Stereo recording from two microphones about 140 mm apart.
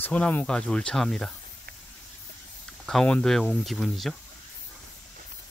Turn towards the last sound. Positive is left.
turn(degrees=0)  # may be behind; listen again after turning